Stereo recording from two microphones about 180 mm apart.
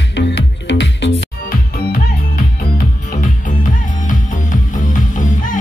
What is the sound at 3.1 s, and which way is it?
Music, 45° left (ahead or behind).